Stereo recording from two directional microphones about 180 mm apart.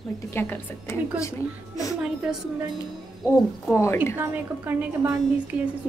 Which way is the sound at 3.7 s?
15° left (ahead or behind).